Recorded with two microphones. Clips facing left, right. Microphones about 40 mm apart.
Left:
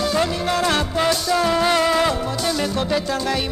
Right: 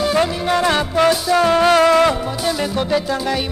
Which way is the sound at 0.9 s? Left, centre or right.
Right.